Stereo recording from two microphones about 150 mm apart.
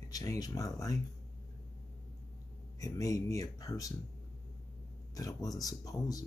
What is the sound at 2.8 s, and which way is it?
Speech, 20° left (ahead or behind).